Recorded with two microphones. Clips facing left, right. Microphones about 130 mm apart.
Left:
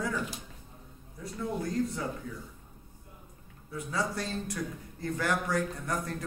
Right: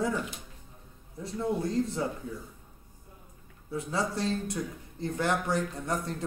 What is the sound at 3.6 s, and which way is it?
Speech, 25° right (ahead or behind).